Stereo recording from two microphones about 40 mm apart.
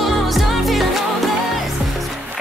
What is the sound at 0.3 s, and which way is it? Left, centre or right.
Music, centre.